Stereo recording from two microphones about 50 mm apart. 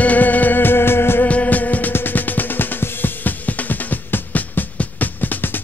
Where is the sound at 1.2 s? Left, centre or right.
Left.